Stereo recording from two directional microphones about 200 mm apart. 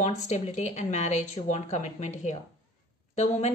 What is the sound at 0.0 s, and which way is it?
Speech, 35° left (ahead or behind).